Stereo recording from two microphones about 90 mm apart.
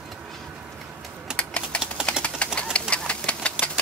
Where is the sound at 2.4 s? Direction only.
10° left (ahead or behind).